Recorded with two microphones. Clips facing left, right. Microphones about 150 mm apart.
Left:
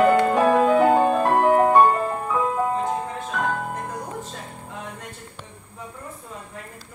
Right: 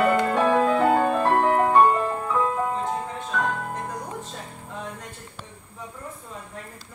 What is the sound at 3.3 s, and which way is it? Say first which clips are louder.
Music: left 1 dB; 5° left (ahead or behind).